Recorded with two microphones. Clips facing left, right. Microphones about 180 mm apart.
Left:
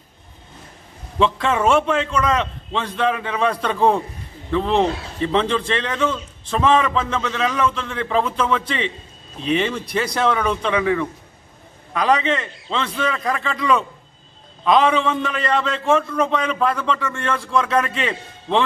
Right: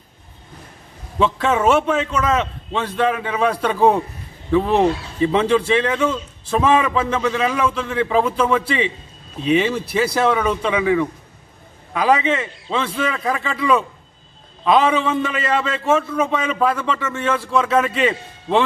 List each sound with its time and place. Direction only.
1.2 s a man's voice: 5° right (ahead or behind)